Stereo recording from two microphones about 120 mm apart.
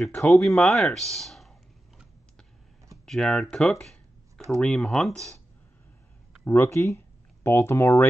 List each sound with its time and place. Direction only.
0.3 s clicking: centre (ahead or behind)
3.1 s speech: 5° left (ahead or behind)
6.4 s speech: 20° left (ahead or behind)